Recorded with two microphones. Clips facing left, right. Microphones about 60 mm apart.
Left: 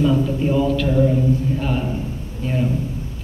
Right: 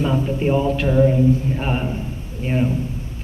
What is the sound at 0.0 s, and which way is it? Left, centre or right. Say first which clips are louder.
A man's voice: left 2 dB; right.